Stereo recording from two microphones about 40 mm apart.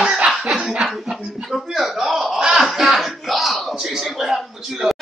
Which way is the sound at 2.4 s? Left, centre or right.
Centre.